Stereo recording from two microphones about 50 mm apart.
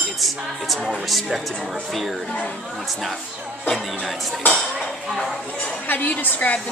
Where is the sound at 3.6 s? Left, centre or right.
Centre.